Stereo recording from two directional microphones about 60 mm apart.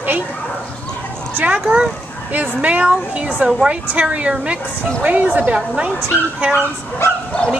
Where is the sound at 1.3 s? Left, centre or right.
Right.